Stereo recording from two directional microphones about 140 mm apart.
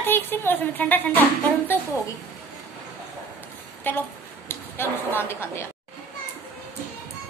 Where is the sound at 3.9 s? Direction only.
15° left (ahead or behind).